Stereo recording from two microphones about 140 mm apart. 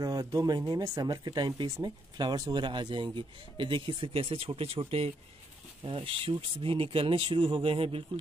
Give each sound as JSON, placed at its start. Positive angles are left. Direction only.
{"t": 0.0, "sound": "speech", "side_deg": -25}